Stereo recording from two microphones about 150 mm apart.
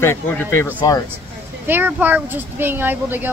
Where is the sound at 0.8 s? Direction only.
25° left (ahead or behind).